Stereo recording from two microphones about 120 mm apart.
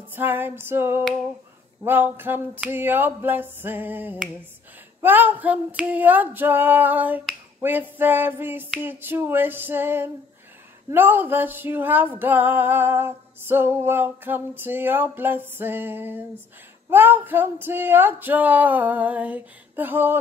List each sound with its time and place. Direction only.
0.1 s music: 15° right (ahead or behind)